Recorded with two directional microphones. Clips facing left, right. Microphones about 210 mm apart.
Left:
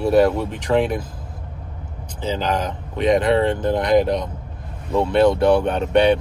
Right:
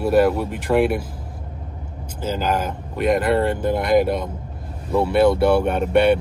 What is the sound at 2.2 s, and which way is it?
Speech, 5° right (ahead or behind).